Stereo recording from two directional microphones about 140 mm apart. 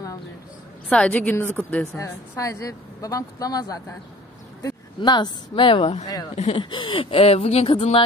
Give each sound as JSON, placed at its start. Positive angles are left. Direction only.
{"t": 0.8, "sound": "a woman's voice", "side_deg": 5}
{"t": 2.0, "sound": "a woman's voice", "side_deg": 20}